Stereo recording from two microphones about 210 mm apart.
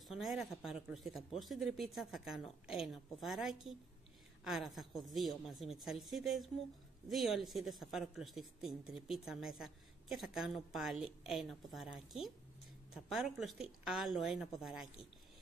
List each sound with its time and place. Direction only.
0.1 s a woman's voice: centre (ahead or behind)